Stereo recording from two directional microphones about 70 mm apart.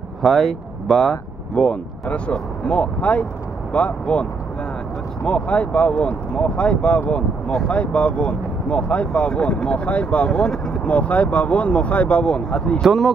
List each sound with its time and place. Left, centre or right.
0.2 s speech: centre
1.6 s speech: centre
12.8 s speech: centre